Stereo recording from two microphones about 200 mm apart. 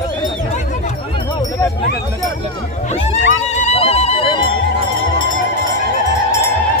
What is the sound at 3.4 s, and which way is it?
Music, 35° left (ahead or behind).